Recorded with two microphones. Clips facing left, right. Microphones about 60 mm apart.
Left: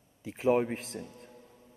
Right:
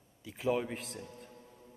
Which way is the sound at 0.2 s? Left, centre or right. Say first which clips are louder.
Left 6 dB; left.